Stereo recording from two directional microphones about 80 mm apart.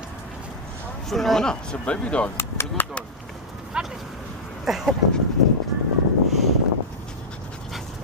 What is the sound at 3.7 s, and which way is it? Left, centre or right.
Speech, centre.